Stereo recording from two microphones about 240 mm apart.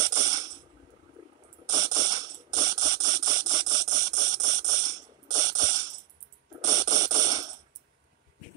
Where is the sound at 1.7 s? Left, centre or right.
Centre.